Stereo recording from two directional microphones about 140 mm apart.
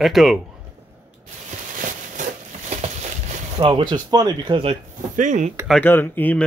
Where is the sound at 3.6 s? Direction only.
35° right (ahead or behind).